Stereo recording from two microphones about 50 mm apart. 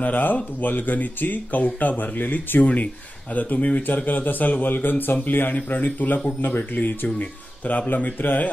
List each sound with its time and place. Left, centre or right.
0.0 s a man's voice: left